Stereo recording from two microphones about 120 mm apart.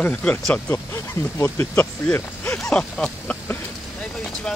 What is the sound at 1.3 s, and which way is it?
Speech, 20° left (ahead or behind).